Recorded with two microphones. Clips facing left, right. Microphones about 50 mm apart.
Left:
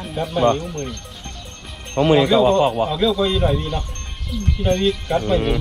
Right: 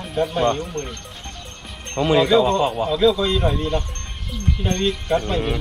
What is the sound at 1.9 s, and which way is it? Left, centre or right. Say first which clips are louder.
Speech: left 3 dB; left.